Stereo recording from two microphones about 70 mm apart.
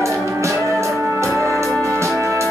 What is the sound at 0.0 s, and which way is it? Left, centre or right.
Music, right.